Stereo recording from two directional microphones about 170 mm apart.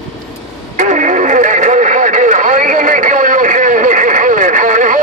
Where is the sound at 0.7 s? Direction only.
45° right (ahead or behind).